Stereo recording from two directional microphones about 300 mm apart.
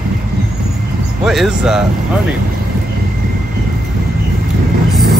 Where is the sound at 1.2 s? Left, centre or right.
Centre.